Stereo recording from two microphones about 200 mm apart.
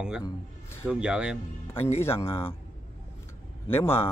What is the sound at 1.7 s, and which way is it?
Speech, 10° left (ahead or behind).